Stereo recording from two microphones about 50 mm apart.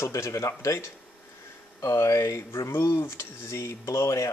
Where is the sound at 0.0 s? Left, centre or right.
Left.